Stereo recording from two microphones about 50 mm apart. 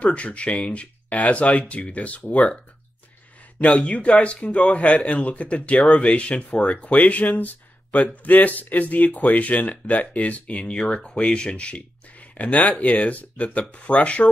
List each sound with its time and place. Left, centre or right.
0.0 s speech: left